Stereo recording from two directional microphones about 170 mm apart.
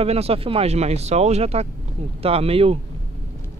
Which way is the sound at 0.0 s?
35° right (ahead or behind).